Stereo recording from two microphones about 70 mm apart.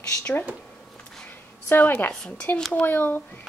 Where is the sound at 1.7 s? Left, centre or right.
Left.